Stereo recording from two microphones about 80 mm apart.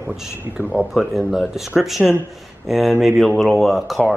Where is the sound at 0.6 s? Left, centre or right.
Centre.